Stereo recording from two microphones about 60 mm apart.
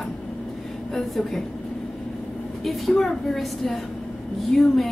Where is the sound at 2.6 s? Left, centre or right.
Centre.